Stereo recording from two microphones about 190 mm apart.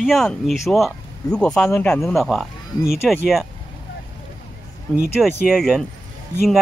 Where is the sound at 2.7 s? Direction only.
20° left (ahead or behind).